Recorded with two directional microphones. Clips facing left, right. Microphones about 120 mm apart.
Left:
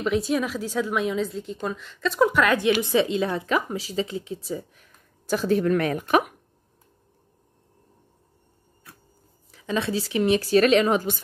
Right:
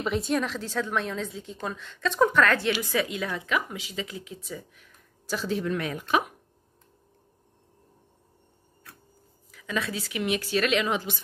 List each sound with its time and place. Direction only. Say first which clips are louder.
0.0 s a woman's voice: left 3 dB; centre (ahead or behind)
2.8 s a woman's voice: left 6 dB; 25° left (ahead or behind); by 6.3 s 55° left (ahead or behind)
9.5 s a woman's voice: left 5 dB; 30° left (ahead or behind); by 11.2 s 45° left (ahead or behind)